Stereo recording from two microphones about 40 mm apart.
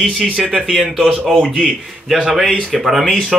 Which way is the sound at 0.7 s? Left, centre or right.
Centre.